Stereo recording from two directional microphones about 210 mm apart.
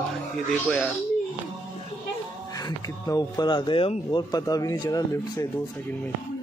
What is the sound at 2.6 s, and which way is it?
Speech, 15° left (ahead or behind).